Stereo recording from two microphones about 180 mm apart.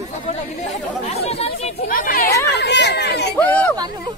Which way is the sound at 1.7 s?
50° left (ahead or behind).